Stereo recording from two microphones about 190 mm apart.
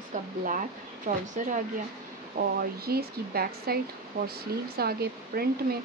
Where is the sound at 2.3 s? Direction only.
55° right (ahead or behind).